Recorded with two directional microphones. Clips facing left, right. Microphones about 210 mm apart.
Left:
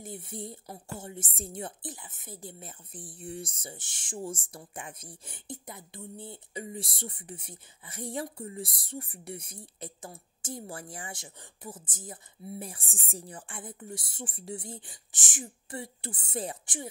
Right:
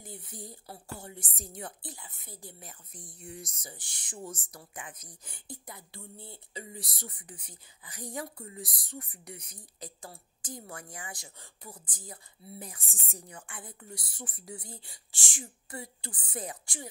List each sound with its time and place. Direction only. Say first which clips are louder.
0.0 s a woman's voice: left 6 dB; 25° left (ahead or behind)